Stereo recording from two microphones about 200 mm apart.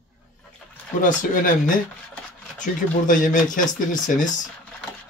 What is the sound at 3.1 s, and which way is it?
Speech, 40° left (ahead or behind).